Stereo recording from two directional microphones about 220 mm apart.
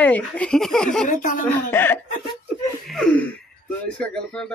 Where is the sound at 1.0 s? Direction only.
35° left (ahead or behind).